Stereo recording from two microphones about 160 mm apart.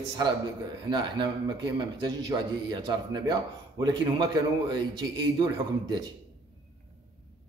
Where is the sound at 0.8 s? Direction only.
30° right (ahead or behind).